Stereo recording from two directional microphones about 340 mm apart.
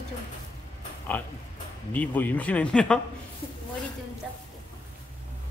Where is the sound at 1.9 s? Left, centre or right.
Centre.